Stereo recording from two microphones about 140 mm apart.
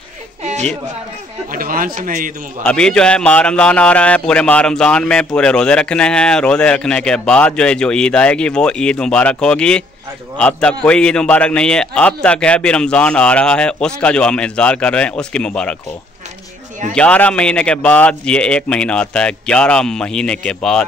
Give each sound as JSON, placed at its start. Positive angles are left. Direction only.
{"t": 0.4, "sound": "a sound", "side_deg": -55}
{"t": 1.5, "sound": "a man's voice", "side_deg": -90}
{"t": 2.6, "sound": "a man's voice", "side_deg": 5}
{"t": 16.9, "sound": "a man's voice", "side_deg": 10}